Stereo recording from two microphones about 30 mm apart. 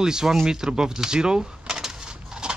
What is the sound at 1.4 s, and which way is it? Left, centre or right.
Coin, centre.